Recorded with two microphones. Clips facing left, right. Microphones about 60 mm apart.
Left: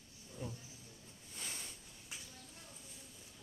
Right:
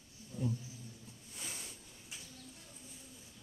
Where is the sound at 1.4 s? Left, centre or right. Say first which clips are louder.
Even; centre.